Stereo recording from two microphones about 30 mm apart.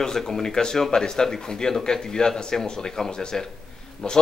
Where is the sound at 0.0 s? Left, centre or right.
Centre.